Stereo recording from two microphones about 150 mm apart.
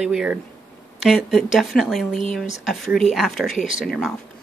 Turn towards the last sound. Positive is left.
turn(degrees=0)  # may be behind; listen again after turning